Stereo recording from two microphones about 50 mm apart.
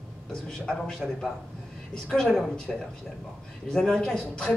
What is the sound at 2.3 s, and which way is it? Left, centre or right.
Speech, centre.